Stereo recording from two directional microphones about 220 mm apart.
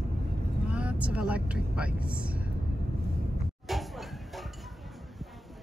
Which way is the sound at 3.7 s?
Centre (ahead or behind).